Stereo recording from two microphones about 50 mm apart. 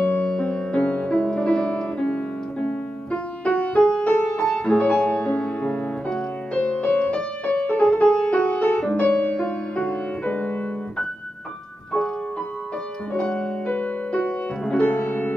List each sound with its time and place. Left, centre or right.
0.0 s music: left
0.3 s music: centre
13.1 s music: left